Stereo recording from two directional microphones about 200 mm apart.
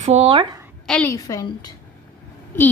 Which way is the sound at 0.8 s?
5° left (ahead or behind).